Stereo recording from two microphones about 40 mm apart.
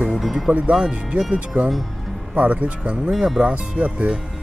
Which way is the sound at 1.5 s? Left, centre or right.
Right.